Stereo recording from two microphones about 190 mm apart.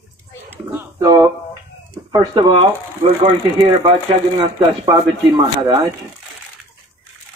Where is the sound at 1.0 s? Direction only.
20° right (ahead or behind).